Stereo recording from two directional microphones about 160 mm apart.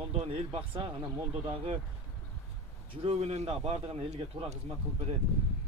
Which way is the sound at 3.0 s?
40° right (ahead or behind).